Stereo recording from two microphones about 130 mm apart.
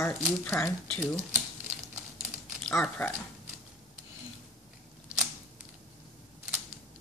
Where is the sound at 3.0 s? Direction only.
15° left (ahead or behind).